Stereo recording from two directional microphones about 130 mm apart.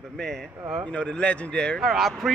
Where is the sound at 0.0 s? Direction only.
Centre (ahead or behind).